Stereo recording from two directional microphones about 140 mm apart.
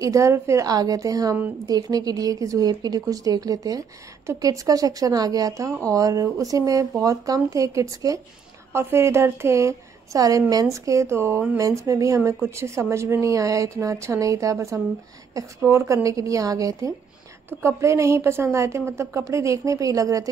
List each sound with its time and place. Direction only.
0.0 s a woman's voice: 20° right (ahead or behind)